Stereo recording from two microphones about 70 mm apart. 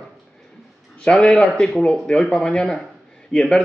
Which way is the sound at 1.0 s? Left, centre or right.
Centre.